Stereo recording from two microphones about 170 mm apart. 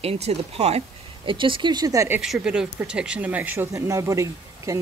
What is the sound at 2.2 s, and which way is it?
Speech, 5° right (ahead or behind).